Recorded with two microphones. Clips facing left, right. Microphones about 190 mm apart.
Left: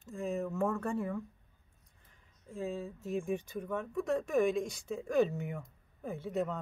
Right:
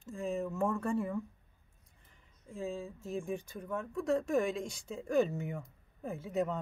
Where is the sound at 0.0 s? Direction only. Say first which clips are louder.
Even; centre (ahead or behind).